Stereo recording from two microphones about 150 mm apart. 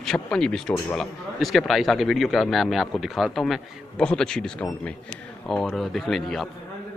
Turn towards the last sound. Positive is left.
turn(degrees=0)  # may be behind; listen again after turning